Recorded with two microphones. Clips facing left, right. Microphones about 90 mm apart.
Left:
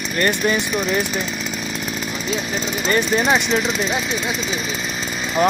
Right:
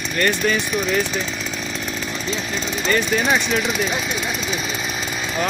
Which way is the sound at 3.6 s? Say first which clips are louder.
Left 1 dB; 5° right (ahead or behind).